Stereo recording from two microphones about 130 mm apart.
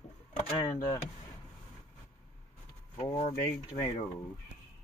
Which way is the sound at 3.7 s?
30° left (ahead or behind).